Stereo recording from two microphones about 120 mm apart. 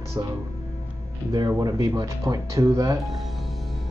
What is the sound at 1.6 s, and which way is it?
Speech, 30° right (ahead or behind).